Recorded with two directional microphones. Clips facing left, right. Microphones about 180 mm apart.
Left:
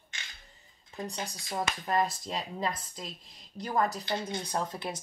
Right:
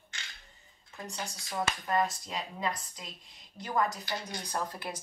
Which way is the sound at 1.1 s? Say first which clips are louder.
Left 2 dB; 20° left (ahead or behind).